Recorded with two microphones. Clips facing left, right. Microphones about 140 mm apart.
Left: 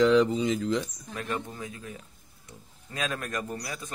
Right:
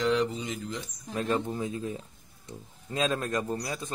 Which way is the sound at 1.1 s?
25° right (ahead or behind).